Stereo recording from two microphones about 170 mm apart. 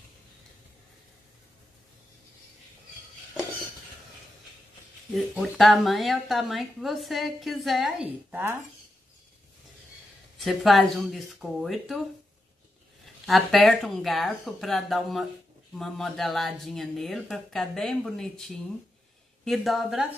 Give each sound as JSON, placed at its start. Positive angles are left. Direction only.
{"t": 5.3, "sound": "a woman's voice", "side_deg": 0}
{"t": 10.4, "sound": "a woman's voice", "side_deg": 0}
{"t": 13.0, "sound": "a woman's voice", "side_deg": 0}